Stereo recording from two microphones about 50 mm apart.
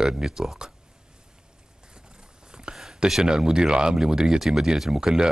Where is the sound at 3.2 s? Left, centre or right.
Centre.